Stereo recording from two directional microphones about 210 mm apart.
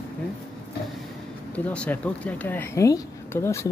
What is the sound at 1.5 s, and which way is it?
Speech, 5° left (ahead or behind).